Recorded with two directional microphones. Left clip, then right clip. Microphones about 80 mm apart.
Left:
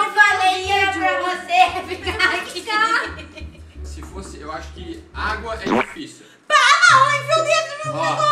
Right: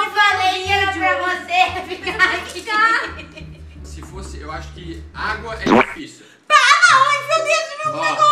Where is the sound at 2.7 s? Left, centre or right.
Centre.